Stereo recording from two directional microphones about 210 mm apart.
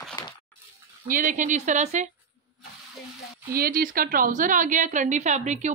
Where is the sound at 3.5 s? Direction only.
45° right (ahead or behind).